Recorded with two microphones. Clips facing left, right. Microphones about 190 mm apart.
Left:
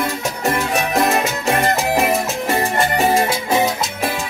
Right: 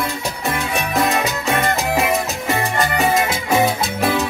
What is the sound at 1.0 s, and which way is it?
Music, 40° left (ahead or behind).